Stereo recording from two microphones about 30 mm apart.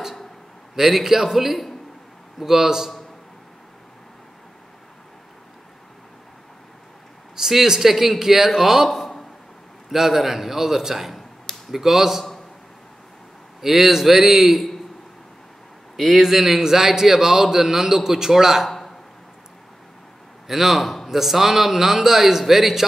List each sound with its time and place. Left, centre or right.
0.7 s a man's voice: centre
7.3 s a man's voice: centre
13.6 s a man's voice: centre
16.0 s a man's voice: centre
20.4 s a man's voice: centre